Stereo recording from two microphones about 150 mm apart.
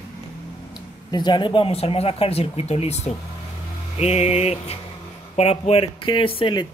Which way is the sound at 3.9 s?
45° left (ahead or behind).